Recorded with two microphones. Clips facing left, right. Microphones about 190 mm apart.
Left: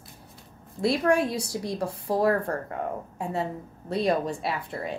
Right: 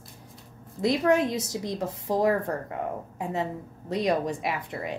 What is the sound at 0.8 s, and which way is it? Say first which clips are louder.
Speech: even; 20° right (ahead or behind).